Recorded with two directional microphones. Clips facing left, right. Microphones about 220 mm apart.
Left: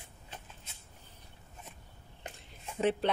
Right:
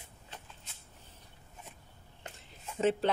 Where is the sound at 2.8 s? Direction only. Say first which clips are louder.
Right 1 dB; centre (ahead or behind).